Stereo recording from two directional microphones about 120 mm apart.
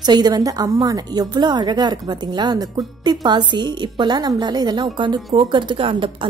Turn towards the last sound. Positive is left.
turn(degrees=-45)  # may be behind; listen again after turning